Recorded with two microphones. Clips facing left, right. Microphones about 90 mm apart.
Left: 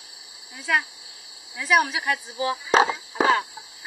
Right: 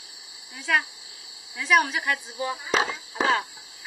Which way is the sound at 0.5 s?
Centre (ahead or behind).